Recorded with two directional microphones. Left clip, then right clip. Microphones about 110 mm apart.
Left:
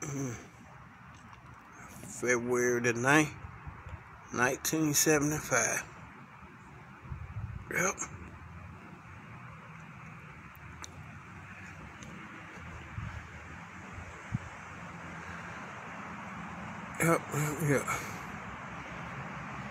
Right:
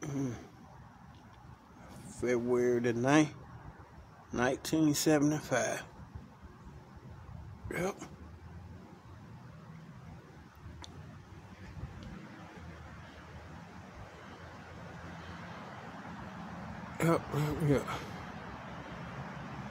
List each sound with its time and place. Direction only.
0.0 s a sound: 20° right (ahead or behind)
2.0 s speech: 20° right (ahead or behind)
7.6 s speech: 15° right (ahead or behind)
16.9 s speech: 20° right (ahead or behind)